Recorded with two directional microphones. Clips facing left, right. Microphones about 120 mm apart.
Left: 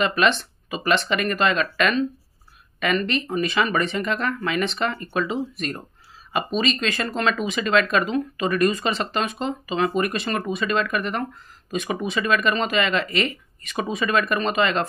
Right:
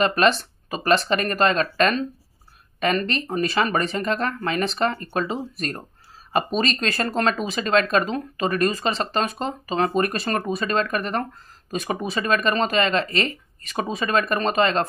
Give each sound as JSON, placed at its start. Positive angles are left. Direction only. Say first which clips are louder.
{"t": 0.0, "sound": "speech", "louder": "right 2 dB", "side_deg": -35}